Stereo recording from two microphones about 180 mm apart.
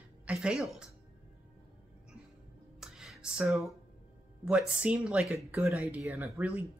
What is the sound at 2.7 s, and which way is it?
Music, centre (ahead or behind).